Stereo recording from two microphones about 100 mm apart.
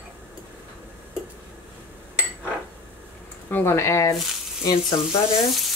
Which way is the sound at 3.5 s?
25° left (ahead or behind).